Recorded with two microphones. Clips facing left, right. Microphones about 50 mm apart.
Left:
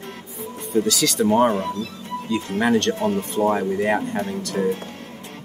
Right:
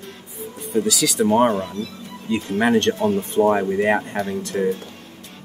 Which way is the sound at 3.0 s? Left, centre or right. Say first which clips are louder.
Right 2 dB; left.